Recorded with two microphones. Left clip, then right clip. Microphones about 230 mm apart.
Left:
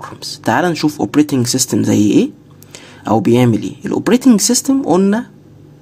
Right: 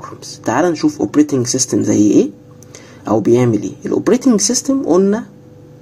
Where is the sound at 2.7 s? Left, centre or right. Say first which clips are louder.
Left 1 dB; left.